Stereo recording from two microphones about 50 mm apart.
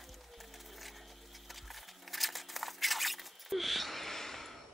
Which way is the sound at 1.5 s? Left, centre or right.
Centre.